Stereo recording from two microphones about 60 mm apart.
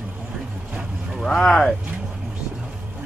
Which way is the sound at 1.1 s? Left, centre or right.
Centre.